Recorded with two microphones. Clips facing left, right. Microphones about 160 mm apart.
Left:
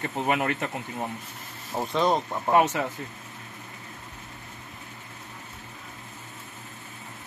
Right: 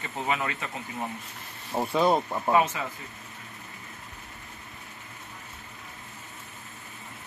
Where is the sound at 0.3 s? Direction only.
60° left (ahead or behind).